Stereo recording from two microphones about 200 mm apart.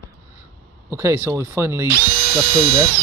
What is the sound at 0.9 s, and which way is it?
Speech, 10° right (ahead or behind).